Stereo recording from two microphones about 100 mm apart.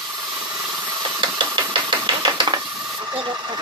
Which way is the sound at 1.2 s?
50° right (ahead or behind).